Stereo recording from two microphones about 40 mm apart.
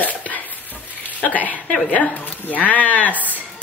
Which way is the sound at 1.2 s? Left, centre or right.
Left.